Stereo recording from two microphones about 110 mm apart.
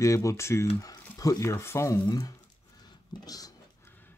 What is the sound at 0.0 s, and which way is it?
Speech, 30° left (ahead or behind).